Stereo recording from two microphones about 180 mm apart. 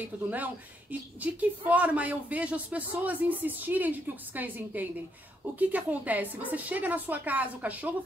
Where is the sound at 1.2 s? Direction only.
10° right (ahead or behind).